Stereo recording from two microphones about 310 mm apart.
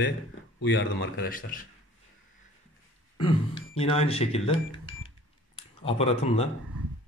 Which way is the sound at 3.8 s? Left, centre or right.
Centre.